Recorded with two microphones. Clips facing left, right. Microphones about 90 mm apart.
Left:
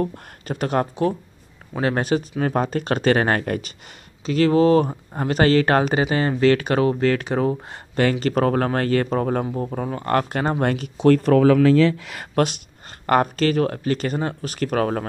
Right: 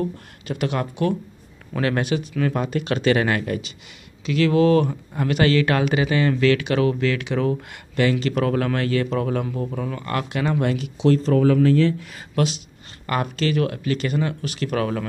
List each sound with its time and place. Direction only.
0.0 s speech: 40° left (ahead or behind)
1.7 s speech: 25° left (ahead or behind); by 3.7 s 45° left (ahead or behind)
4.3 s speech: 35° left (ahead or behind); by 12.3 s 85° left
12.4 s speech: 50° left (ahead or behind)